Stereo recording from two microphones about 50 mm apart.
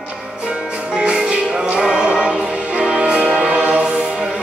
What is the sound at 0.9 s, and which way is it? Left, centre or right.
Music, centre.